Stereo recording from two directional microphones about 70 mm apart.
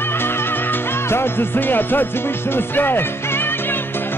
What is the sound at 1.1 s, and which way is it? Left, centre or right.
Music, left.